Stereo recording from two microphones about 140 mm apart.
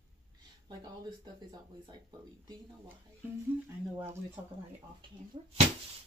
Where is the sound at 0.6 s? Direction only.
30° right (ahead or behind).